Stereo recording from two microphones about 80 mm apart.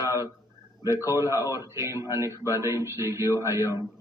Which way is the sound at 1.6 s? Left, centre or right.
Right.